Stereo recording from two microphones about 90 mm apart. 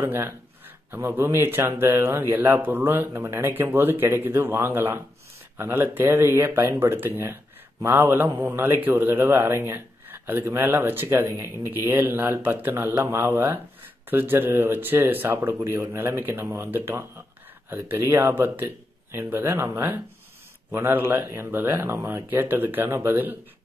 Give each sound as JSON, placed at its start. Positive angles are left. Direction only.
{"t": 0.0, "sound": "speech", "side_deg": -25}